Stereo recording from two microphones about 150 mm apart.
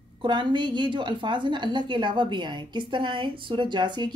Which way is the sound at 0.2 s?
30° right (ahead or behind).